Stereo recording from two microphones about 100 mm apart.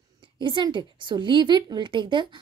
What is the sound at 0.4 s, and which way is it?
A woman's voice, 50° right (ahead or behind).